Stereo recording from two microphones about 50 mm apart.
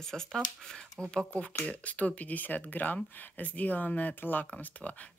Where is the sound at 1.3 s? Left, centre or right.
Left.